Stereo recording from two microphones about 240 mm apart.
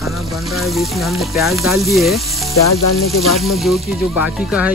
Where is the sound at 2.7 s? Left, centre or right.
Left.